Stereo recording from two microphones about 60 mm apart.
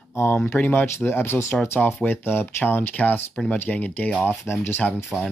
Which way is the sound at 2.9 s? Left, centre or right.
Left.